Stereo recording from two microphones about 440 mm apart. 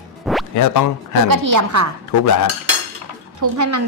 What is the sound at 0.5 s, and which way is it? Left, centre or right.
Speech, left.